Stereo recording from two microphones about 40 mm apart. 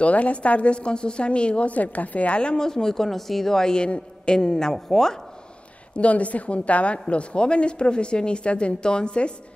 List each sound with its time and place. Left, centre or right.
0.0 s a woman's voice: left
1.8 s a woman's voice: left; by 5.2 s centre
5.9 s a woman's voice: left